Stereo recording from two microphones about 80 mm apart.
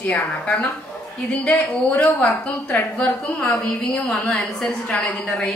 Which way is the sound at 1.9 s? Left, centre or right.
Centre.